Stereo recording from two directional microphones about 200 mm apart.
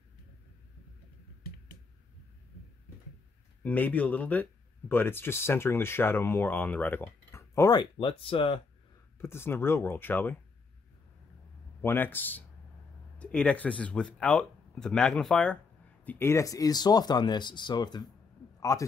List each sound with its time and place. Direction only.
3.6 s speech: 10° left (ahead or behind); by 8.5 s 25° left (ahead or behind)
9.2 s speech: 10° left (ahead or behind)
11.8 s a man's voice: 10° left (ahead or behind)